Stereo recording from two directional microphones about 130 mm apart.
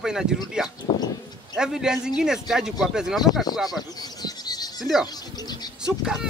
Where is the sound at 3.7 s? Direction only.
30° left (ahead or behind).